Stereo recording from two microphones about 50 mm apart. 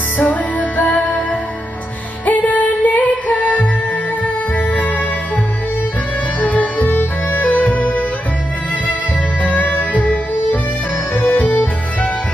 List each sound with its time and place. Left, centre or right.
0.2 s music: left
2.2 s music: left
6.4 s music: left
9.4 s music: left